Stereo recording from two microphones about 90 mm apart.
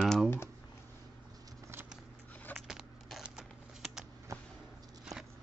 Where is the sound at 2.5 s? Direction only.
5° right (ahead or behind).